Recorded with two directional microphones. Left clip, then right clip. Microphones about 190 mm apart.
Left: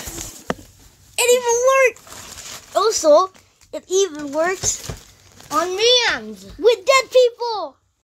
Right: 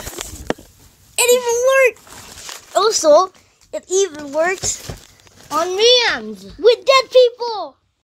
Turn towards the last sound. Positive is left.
turn(degrees=5)  # may be behind; listen again after turning